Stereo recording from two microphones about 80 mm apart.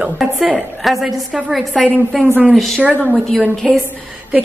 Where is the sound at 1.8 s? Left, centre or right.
Centre.